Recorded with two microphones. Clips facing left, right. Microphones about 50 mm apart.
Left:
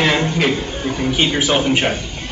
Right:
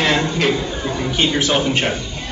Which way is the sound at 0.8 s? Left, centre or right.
Left.